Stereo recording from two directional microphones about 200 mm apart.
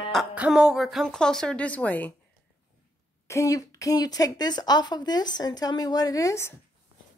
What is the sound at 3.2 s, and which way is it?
Speech, 15° left (ahead or behind).